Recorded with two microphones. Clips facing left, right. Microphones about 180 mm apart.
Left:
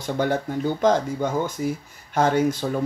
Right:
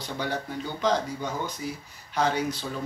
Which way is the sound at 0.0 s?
50° left (ahead or behind).